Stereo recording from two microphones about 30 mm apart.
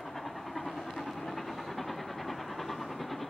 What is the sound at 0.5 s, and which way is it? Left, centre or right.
Train, centre.